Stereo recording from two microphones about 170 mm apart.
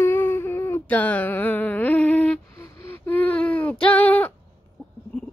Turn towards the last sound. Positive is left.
turn(degrees=10)  # may be behind; listen again after turning